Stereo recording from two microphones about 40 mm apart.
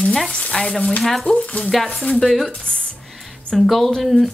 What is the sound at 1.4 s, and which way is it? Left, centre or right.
Speech, left.